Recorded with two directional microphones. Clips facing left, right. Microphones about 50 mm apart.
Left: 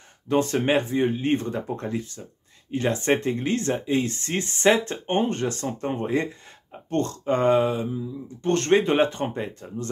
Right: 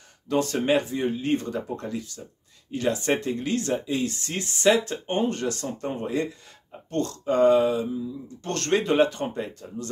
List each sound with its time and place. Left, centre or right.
0.3 s speech: left